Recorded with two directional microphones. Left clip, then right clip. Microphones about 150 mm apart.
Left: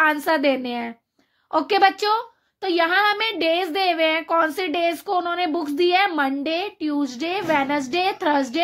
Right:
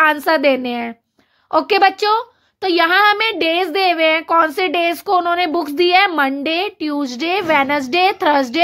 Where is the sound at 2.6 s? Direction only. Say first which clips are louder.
Right 6 dB; 40° right (ahead or behind).